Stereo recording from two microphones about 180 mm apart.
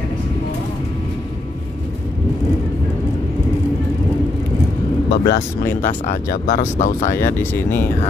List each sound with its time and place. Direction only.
5.1 s speech: 65° left (ahead or behind)
5.8 s speech: 50° left (ahead or behind)
7.1 s speech: 15° left (ahead or behind)